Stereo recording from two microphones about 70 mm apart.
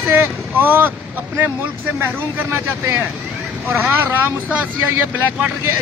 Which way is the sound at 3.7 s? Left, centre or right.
Right.